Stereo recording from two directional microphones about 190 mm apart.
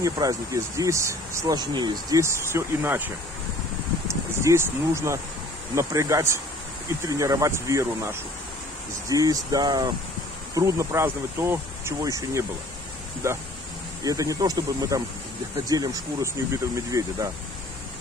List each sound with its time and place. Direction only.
0.0 s speech: 15° right (ahead or behind)
4.5 s speech: 15° right (ahead or behind)